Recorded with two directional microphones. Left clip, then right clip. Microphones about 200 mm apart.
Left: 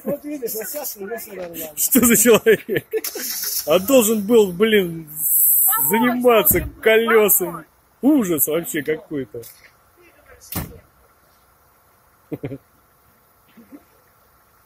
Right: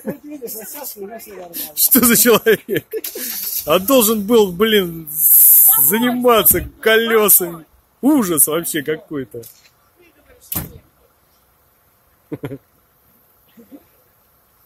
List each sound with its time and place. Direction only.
1.8 s a man's voice: 20° right (ahead or behind)
3.6 s a man's voice: 20° right (ahead or behind)
12.3 s a sound: 20° right (ahead or behind)